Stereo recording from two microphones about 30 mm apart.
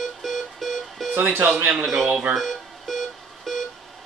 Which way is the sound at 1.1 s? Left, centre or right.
Right.